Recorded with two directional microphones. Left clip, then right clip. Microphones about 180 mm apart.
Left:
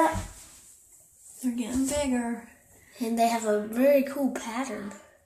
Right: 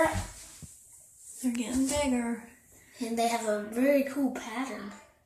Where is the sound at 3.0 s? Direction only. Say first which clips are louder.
Left 4 dB; 35° left (ahead or behind).